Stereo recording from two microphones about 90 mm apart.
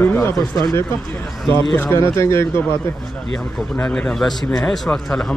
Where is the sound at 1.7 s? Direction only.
25° left (ahead or behind).